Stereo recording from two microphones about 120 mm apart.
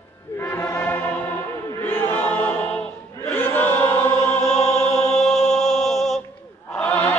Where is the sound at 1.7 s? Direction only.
15° left (ahead or behind).